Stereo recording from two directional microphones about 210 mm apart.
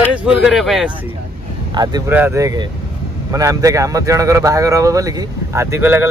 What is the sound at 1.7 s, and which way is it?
Speech, 20° right (ahead or behind).